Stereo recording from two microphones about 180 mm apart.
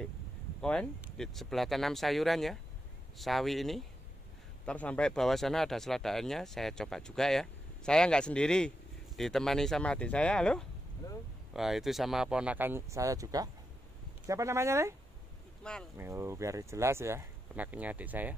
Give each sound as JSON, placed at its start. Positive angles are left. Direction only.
{"t": 0.6, "sound": "speech", "side_deg": 5}
{"t": 11.0, "sound": "boat", "side_deg": 20}
{"t": 11.5, "sound": "speech", "side_deg": 0}
{"t": 15.6, "sound": "speech", "side_deg": 5}
{"t": 16.0, "sound": "speech", "side_deg": -15}